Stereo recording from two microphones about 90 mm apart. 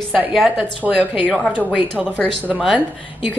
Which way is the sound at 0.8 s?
15° right (ahead or behind).